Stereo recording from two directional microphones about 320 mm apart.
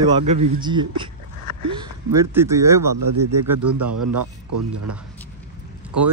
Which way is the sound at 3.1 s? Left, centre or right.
Right.